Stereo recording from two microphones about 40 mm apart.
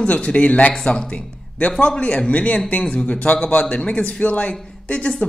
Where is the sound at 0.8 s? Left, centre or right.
Left.